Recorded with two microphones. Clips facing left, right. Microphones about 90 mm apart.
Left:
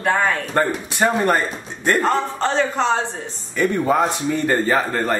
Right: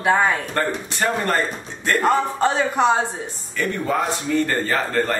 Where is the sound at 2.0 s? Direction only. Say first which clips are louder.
Right 1 dB; 15° right (ahead or behind).